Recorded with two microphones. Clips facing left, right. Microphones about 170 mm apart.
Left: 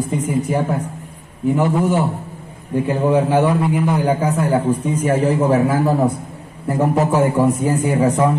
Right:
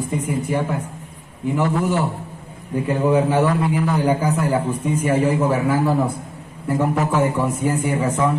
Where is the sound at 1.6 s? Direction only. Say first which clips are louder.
Left 2 dB; 20° left (ahead or behind).